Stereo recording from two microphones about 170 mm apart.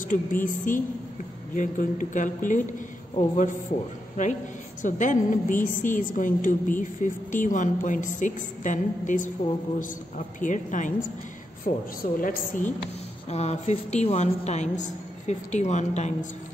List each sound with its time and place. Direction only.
0.1 s a woman's voice: 50° left (ahead or behind)
13.3 s a woman's voice: 40° left (ahead or behind)